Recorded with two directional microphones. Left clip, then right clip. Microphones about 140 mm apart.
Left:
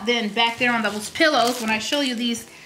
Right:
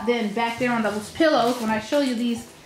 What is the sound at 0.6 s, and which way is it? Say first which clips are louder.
A woman's voice: left 2 dB; 45° left (ahead or behind).